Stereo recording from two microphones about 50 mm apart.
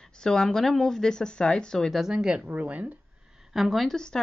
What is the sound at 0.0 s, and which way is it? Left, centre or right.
Speech, centre.